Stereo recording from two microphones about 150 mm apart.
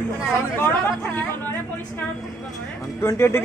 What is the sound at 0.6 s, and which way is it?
Speech, 10° left (ahead or behind).